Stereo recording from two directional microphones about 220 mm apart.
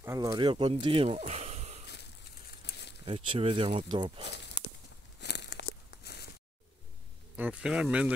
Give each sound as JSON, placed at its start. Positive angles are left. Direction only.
{"t": 0.0, "sound": "speech", "side_deg": -15}
{"t": 2.6, "sound": "a sound", "side_deg": 50}
{"t": 3.1, "sound": "speech", "side_deg": -25}
{"t": 4.6, "sound": "a sound", "side_deg": 50}
{"t": 5.2, "sound": "tearing", "side_deg": 50}
{"t": 7.3, "sound": "speech", "side_deg": -5}